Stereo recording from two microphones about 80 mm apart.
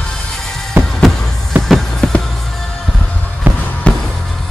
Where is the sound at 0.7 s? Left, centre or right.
Right.